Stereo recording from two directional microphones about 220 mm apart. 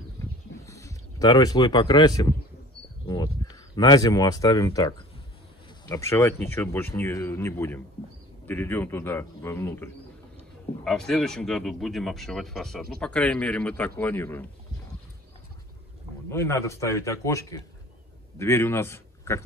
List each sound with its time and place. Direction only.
0.2 s a sound: 15° left (ahead or behind)
3.1 s speech: 20° left (ahead or behind)
16.3 s a man's voice: 10° left (ahead or behind)